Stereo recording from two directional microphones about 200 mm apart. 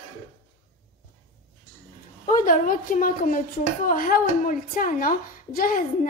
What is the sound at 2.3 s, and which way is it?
A woman's voice, 40° left (ahead or behind).